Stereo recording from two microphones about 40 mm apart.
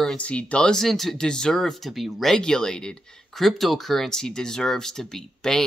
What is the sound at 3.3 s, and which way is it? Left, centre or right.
Speech, centre.